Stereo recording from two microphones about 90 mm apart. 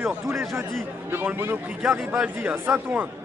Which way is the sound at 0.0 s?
25° right (ahead or behind).